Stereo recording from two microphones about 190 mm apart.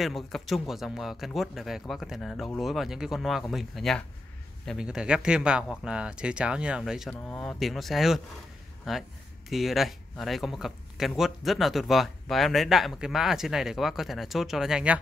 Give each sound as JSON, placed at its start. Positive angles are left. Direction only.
{"t": 0.0, "sound": "speech", "side_deg": 0}